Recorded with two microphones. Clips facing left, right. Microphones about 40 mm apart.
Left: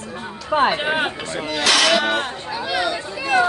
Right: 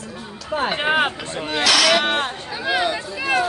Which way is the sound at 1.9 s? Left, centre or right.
Right.